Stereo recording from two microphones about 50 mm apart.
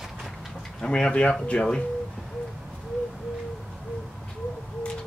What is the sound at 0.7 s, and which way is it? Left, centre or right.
Speech, centre.